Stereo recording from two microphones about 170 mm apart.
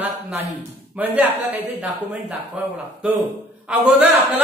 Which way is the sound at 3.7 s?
10° right (ahead or behind).